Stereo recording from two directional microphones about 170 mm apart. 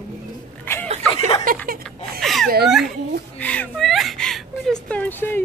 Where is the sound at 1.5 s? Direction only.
55° right (ahead or behind).